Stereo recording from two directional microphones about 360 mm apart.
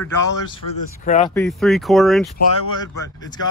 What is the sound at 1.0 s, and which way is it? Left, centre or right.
Speech, centre.